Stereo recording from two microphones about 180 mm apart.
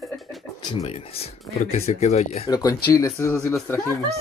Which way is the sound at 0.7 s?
35° left (ahead or behind).